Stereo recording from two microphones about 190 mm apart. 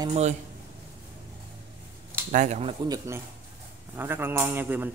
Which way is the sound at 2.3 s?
40° right (ahead or behind).